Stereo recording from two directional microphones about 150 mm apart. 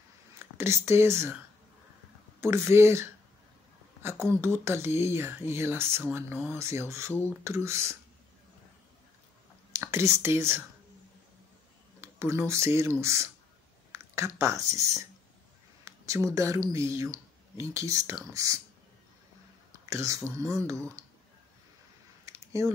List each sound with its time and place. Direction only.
0.6 s speech: 15° right (ahead or behind)
2.4 s speech: 15° right (ahead or behind)
9.7 s speech: 20° right (ahead or behind)
12.0 s speech: 15° right (ahead or behind)
19.9 s speech: 20° right (ahead or behind)
22.2 s a sound: 20° right (ahead or behind)